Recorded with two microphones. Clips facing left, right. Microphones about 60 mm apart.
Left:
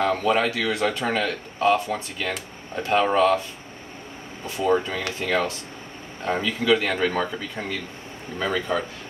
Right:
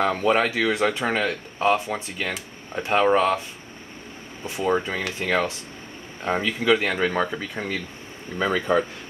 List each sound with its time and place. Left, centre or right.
0.0 s speech: right
4.5 s speech: centre